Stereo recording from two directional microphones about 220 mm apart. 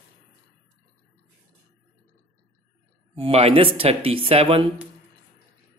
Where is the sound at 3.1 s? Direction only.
30° right (ahead or behind).